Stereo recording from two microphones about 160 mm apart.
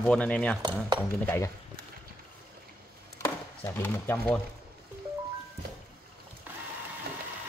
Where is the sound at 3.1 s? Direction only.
15° left (ahead or behind).